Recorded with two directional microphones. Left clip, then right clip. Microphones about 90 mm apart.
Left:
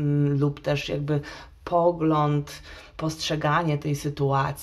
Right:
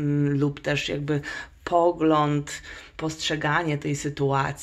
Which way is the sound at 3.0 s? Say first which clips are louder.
Right 1 dB; 10° right (ahead or behind).